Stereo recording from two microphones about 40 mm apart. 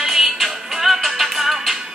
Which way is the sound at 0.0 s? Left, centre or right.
Centre.